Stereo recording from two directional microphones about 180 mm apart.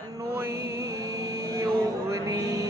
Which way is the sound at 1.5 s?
15° right (ahead or behind).